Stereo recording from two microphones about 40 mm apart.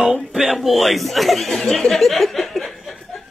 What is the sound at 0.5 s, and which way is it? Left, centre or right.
A man's voice, centre.